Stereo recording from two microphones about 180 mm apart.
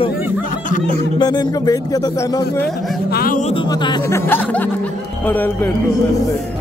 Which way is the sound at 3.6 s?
25° left (ahead or behind).